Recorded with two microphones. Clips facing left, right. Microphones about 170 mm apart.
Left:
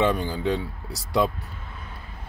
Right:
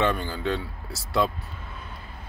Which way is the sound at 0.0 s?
15° left (ahead or behind).